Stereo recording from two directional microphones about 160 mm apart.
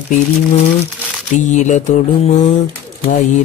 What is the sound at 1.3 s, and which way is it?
Single-lens reflex camera, 50° left (ahead or behind).